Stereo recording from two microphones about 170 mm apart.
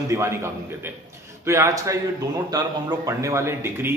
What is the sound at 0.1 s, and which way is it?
A man's voice, 15° right (ahead or behind).